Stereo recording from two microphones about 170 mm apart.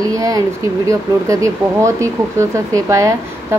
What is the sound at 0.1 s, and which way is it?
Speech, 20° right (ahead or behind).